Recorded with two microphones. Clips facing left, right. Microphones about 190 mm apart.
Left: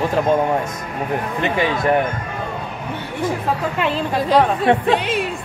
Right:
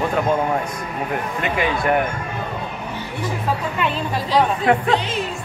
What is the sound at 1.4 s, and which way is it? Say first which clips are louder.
Speech: left 2 dB; 25° left (ahead or behind).